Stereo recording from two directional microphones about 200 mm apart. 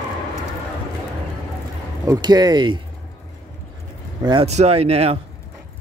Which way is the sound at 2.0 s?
20° right (ahead or behind).